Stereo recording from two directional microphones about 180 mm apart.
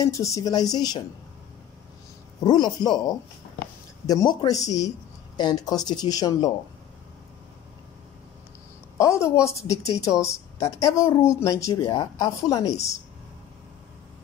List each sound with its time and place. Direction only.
0.0 s a woman's voice: 20° left (ahead or behind)
2.4 s a woman's voice: 25° left (ahead or behind)
8.9 s a woman's voice: 15° left (ahead or behind)